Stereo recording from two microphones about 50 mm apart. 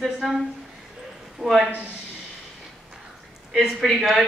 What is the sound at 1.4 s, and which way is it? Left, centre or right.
Speech, centre.